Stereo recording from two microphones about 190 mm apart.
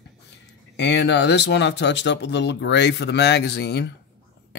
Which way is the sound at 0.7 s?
65° left (ahead or behind).